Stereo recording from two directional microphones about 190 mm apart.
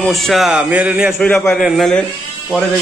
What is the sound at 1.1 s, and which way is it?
Speech, 10° left (ahead or behind).